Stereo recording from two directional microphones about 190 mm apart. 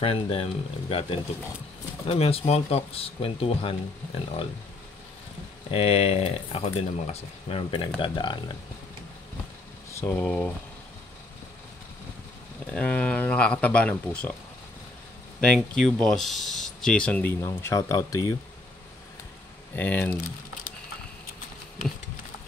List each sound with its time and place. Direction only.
0.0 s speech: 30° left (ahead or behind)
2.0 s speech: 30° left (ahead or behind)
5.7 s speech: 30° left (ahead or behind)
9.9 s speech: 10° left (ahead or behind)
12.7 s speech: 5° left (ahead or behind)
15.4 s speech: 5° left (ahead or behind); by 18.3 s 20° left (ahead or behind)
19.7 s speech: 10° left (ahead or behind)